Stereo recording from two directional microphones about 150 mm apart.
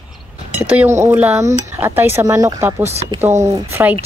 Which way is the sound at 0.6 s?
10° right (ahead or behind).